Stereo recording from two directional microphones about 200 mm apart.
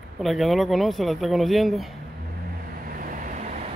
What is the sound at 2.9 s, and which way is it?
Vehicle, 45° right (ahead or behind).